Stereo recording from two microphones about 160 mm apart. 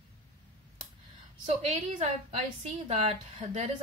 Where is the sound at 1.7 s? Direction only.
45° right (ahead or behind).